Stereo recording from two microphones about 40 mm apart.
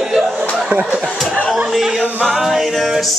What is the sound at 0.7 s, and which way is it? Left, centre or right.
Speech, right.